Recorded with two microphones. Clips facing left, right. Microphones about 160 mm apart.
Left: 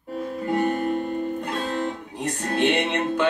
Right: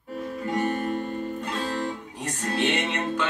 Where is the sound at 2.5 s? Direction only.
55° left (ahead or behind).